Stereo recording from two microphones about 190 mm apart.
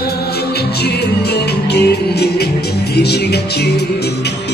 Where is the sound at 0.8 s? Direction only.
60° left (ahead or behind).